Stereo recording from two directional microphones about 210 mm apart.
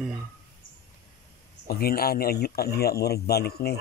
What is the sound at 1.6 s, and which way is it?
A man's voice, 45° left (ahead or behind).